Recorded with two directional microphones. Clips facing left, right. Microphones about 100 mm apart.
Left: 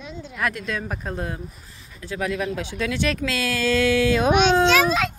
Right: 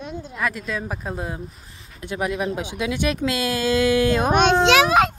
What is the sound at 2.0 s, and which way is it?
Speech, 20° right (ahead or behind).